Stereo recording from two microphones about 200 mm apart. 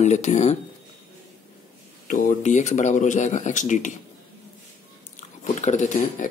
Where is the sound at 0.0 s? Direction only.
35° left (ahead or behind).